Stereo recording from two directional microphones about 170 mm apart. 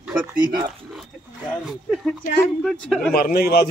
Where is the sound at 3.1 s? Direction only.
65° left (ahead or behind).